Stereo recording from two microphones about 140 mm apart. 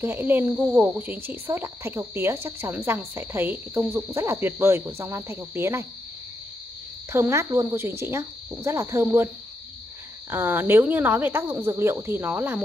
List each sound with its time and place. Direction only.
0.0 s speech: 15° right (ahead or behind)
7.1 s speech: 20° right (ahead or behind)
10.3 s speech: 15° right (ahead or behind)